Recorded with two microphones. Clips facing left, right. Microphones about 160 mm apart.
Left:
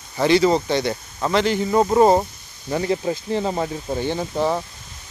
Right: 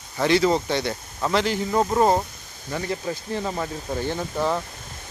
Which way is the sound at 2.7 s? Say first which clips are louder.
Left 6 dB; 25° left (ahead or behind).